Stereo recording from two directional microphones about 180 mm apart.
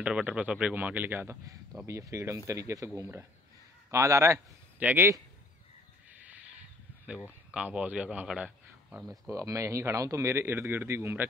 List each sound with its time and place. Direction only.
0.0 s speech: 5° right (ahead or behind)
6.1 s owl: 10° right (ahead or behind)
7.5 s speech: 5° right (ahead or behind)
9.3 s speech: 15° right (ahead or behind)